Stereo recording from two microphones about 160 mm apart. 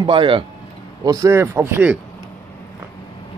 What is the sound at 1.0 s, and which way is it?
Speech, 20° right (ahead or behind).